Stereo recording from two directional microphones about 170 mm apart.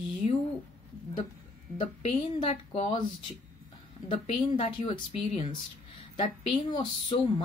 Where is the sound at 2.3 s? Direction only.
35° left (ahead or behind).